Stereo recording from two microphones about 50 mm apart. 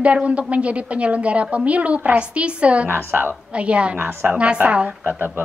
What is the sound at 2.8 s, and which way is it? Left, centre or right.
Speech, right.